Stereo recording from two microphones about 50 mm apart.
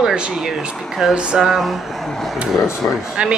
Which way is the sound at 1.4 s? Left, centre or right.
Centre.